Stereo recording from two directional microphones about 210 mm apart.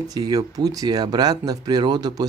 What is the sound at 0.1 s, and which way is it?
Speech, 20° right (ahead or behind).